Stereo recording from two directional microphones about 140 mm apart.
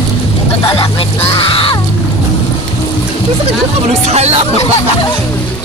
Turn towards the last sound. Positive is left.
turn(degrees=-50)  # may be behind; listen again after turning